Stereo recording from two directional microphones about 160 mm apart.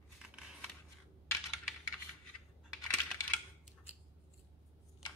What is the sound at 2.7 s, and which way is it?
Computer keyboard, 5° left (ahead or behind).